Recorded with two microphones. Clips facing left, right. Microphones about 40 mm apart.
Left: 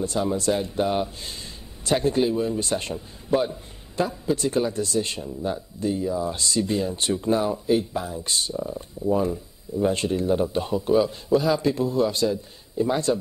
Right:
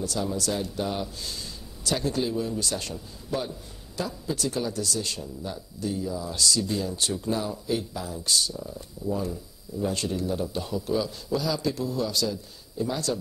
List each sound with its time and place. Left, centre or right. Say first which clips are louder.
0.0 s speech: left 5 dB; left